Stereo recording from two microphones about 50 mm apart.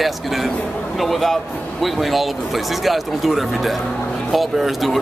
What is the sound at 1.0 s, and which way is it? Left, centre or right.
A man's voice, centre.